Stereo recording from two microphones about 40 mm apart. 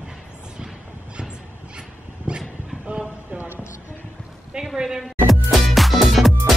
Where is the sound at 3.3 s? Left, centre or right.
Right.